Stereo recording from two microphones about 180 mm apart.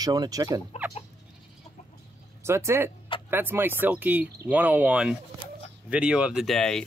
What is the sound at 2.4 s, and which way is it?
Speech, 15° right (ahead or behind).